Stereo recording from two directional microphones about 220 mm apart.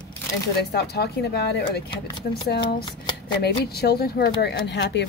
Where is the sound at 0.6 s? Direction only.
45° left (ahead or behind).